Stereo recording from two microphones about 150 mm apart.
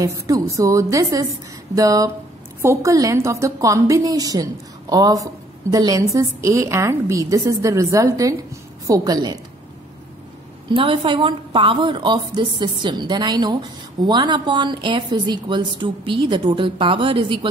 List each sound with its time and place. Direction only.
0.0 s a woman's voice: 20° right (ahead or behind)
10.7 s a woman's voice: 35° right (ahead or behind)